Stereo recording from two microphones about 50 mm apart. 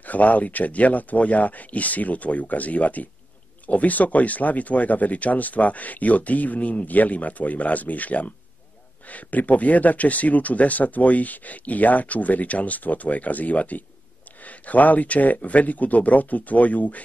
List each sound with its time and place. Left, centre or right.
0.0 s speech: left